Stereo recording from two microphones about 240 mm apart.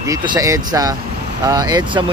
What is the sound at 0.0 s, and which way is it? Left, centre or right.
Speech, centre.